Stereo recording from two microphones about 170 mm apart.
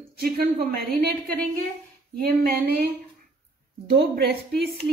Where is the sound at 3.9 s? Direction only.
70° right (ahead or behind).